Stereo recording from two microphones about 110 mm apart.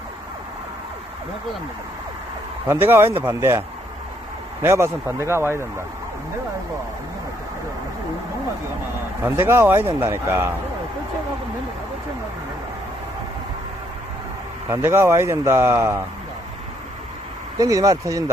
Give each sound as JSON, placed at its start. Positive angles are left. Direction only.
{"t": 2.7, "sound": "speech", "side_deg": -20}
{"t": 9.2, "sound": "speech", "side_deg": -20}
{"t": 14.7, "sound": "speech", "side_deg": -20}
{"t": 17.6, "sound": "speech", "side_deg": -30}